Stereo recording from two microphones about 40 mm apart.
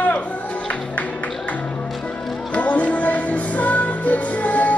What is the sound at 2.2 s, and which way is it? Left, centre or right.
Music, centre.